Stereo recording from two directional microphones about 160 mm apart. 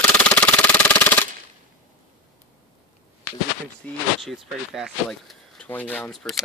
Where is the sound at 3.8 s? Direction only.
Centre (ahead or behind).